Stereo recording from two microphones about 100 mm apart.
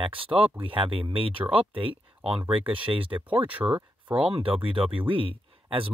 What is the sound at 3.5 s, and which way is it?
Speech, 15° right (ahead or behind).